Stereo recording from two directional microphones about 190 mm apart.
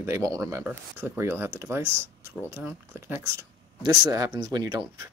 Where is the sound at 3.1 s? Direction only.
10° right (ahead or behind).